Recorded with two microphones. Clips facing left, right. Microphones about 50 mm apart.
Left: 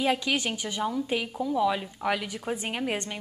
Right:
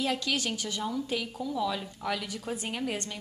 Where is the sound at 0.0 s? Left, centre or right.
Left.